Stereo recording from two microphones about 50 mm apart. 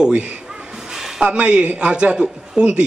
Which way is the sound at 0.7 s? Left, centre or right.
Centre.